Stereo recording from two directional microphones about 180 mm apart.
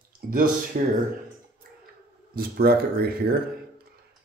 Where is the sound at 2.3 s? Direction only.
60° right (ahead or behind).